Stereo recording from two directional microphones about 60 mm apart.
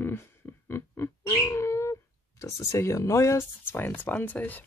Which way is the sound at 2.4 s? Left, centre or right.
Left.